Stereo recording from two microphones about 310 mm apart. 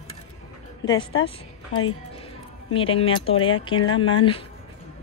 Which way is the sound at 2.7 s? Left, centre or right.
Centre.